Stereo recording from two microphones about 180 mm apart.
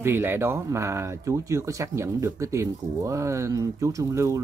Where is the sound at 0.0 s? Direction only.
10° right (ahead or behind).